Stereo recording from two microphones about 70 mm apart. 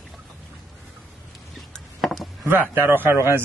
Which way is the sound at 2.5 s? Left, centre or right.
Right.